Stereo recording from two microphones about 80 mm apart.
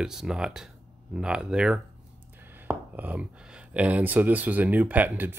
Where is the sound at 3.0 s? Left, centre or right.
Centre.